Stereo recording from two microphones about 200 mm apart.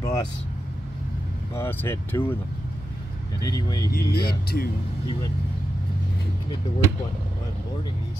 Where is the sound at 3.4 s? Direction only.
20° left (ahead or behind).